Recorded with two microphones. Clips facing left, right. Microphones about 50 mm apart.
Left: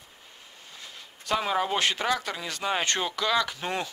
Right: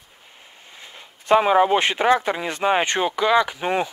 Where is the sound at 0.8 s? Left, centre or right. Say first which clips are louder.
Right 2 dB; right.